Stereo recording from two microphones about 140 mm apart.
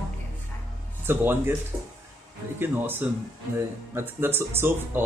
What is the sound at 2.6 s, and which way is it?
Speech, 15° right (ahead or behind).